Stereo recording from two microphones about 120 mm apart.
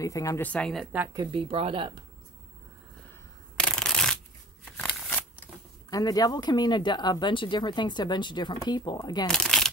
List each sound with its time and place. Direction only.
0.0 s speech: 25° left (ahead or behind)
0.4 s a woman's voice: 10° left (ahead or behind)
1.1 s speech: 35° right (ahead or behind)
1.5 s speech: 50° right (ahead or behind)
3.5 s shuffling cards: 5° left (ahead or behind)
5.9 s speech: 30° left (ahead or behind)
9.3 s shuffling cards: 5° left (ahead or behind)